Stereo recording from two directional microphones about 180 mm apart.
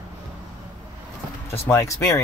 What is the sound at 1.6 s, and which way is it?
Speech, 15° left (ahead or behind).